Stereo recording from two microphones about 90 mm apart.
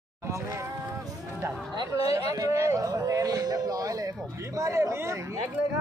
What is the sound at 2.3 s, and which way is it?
A man's voice, 40° right (ahead or behind).